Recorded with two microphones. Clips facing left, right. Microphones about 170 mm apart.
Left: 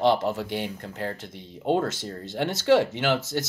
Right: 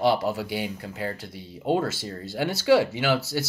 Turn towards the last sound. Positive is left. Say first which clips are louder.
# even
turn(degrees=-5)  # may be behind; listen again after turning